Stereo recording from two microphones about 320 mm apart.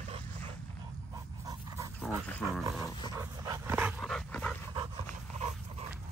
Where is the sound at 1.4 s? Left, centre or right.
Centre.